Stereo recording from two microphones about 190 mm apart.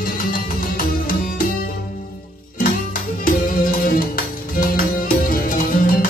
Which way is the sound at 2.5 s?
45° left (ahead or behind).